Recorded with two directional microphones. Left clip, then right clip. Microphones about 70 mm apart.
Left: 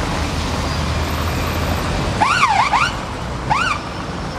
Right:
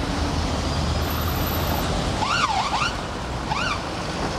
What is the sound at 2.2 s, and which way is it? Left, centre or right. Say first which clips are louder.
Emergency vehicle: left 8 dB; left.